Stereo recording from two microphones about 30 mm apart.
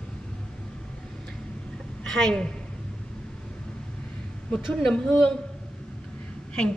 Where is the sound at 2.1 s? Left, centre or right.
Left.